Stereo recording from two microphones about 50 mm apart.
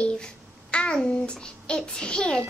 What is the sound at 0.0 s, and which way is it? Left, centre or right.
A child's voice, left.